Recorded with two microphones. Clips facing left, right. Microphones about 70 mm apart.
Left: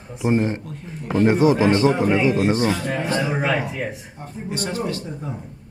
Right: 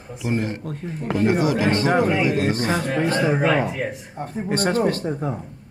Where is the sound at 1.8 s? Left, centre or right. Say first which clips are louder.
Left 1 dB; right.